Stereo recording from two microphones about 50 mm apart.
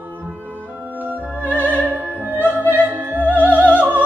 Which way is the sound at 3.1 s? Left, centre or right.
Right.